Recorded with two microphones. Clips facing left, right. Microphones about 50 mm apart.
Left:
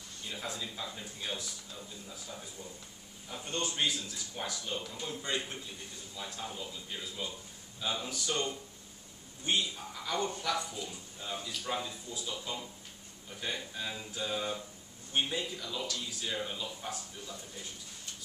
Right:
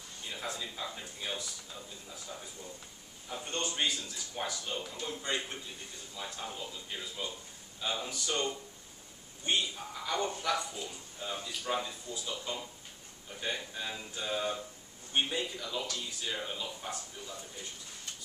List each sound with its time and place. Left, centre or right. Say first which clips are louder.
0.2 s a man's voice: even; centre
3.3 s a man's voice: even; centre